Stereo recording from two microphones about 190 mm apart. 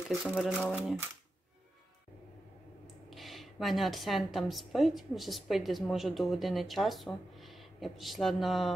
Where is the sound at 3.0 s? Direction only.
Centre (ahead or behind).